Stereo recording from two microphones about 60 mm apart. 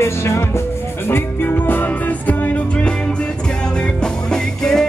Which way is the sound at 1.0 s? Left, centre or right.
Left.